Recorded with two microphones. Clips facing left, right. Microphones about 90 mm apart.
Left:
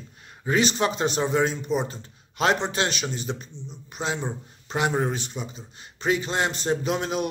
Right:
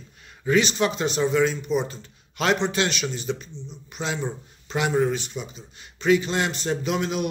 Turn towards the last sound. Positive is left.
turn(degrees=40)  # may be behind; listen again after turning